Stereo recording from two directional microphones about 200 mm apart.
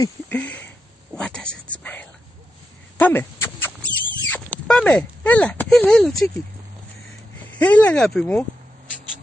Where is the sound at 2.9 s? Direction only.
10° left (ahead or behind).